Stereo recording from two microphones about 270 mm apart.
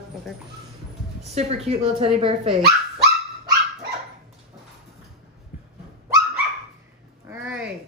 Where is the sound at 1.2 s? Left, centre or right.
Right.